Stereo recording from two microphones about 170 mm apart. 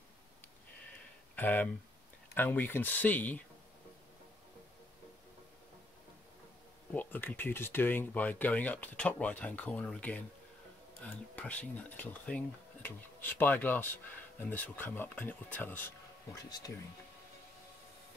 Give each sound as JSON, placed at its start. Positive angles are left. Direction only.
{"t": 1.3, "sound": "speech", "side_deg": 10}
{"t": 6.9, "sound": "speech", "side_deg": 10}
{"t": 16.4, "sound": "speech", "side_deg": 20}